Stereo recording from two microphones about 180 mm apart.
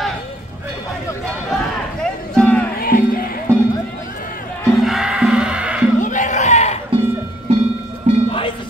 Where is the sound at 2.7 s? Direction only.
55° left (ahead or behind).